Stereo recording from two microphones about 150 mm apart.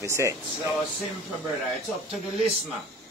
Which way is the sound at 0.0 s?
20° right (ahead or behind).